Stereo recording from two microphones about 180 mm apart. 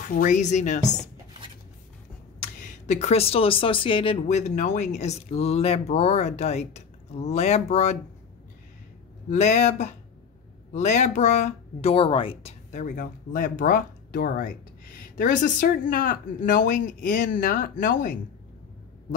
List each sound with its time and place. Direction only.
0.0 s speech: 50° left (ahead or behind)
2.6 s speech: 40° left (ahead or behind)
9.3 s speech: 40° left (ahead or behind)
12.7 s speech: 45° left (ahead or behind)